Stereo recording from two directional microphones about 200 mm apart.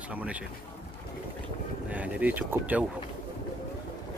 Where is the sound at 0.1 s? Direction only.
5° right (ahead or behind).